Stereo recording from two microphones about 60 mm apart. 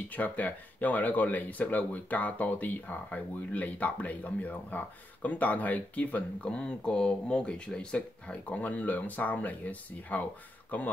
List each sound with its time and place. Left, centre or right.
0.1 s speech: left